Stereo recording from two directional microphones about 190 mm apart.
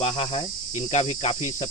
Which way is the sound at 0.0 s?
30° left (ahead or behind).